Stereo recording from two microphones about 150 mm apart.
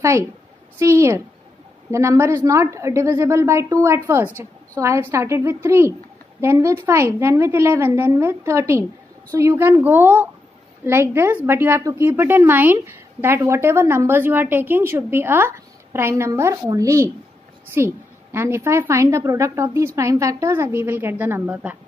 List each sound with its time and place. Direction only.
0.7 s a woman's voice: 20° right (ahead or behind)